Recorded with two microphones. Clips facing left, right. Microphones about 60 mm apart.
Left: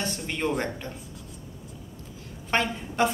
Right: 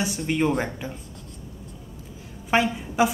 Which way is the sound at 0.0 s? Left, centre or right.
Centre.